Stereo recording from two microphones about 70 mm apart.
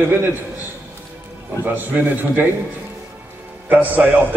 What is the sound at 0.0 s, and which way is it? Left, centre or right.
Speech, right.